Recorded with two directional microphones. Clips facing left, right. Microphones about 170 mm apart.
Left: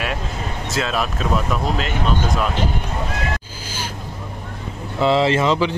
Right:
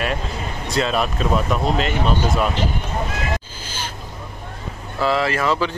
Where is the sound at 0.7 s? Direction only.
Centre (ahead or behind).